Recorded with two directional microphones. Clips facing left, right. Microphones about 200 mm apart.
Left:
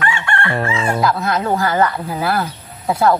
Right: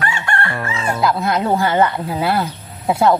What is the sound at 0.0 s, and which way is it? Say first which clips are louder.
Chicken: left 1 dB; 40° right (ahead or behind).